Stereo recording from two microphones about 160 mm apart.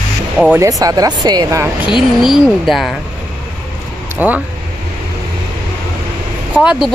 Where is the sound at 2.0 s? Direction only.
Centre (ahead or behind).